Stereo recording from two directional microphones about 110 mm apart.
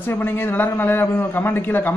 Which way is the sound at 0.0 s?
20° left (ahead or behind).